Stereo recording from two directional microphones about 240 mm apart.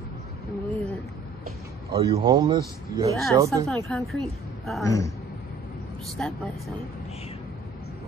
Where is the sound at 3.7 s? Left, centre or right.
Centre.